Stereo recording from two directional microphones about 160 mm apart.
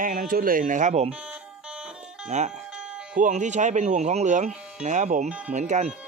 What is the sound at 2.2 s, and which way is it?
Speech, 45° right (ahead or behind).